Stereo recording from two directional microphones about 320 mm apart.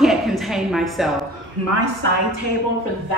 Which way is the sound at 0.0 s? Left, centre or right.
Centre.